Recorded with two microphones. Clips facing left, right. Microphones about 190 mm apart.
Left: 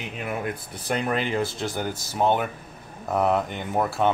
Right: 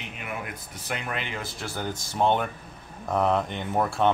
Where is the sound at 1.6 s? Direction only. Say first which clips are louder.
Left 4 dB; 15° left (ahead or behind).